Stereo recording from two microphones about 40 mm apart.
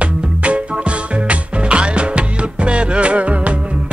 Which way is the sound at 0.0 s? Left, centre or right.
Right.